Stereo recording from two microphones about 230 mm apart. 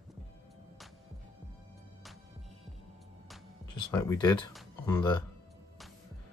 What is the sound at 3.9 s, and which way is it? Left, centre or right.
Speech, centre.